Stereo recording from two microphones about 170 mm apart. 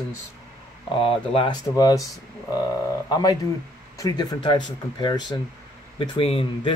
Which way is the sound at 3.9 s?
20° left (ahead or behind).